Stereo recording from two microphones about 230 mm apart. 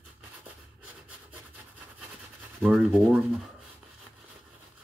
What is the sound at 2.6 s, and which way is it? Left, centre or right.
Speech, centre.